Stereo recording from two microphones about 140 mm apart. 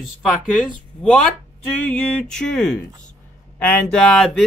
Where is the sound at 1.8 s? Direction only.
5° left (ahead or behind).